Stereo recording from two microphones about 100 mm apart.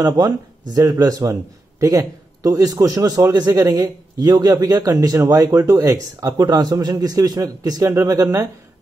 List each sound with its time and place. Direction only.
0.0 s a man's voice: 35° right (ahead or behind)